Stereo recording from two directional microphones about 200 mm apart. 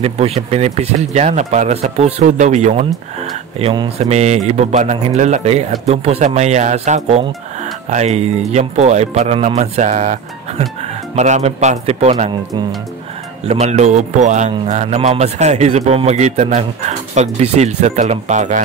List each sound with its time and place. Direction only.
0.0 s speech: 30° right (ahead or behind)
13.5 s speech: 35° right (ahead or behind)